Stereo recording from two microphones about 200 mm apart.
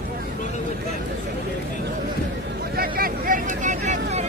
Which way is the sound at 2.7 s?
45° right (ahead or behind).